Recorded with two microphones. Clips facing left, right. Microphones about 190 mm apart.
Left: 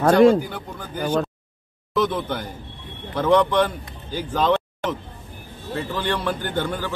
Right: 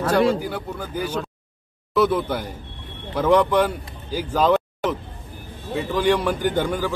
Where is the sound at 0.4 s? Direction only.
5° right (ahead or behind).